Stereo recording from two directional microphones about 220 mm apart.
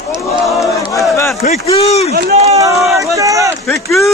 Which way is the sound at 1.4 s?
30° left (ahead or behind).